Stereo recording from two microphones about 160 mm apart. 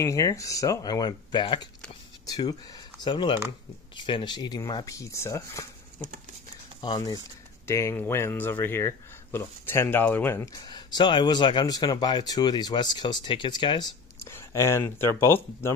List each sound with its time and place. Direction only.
0.0 s speech: 20° left (ahead or behind)
6.8 s speech: 25° left (ahead or behind)
14.3 s speech: 15° left (ahead or behind)